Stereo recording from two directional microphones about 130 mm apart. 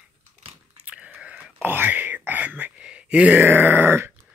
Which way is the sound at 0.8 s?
10° right (ahead or behind).